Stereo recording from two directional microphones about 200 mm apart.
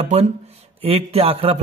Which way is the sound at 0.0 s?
35° right (ahead or behind).